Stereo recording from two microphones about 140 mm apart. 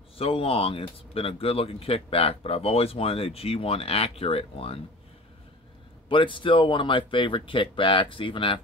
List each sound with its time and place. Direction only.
0.2 s speech: 40° left (ahead or behind)
6.0 s speech: 35° left (ahead or behind)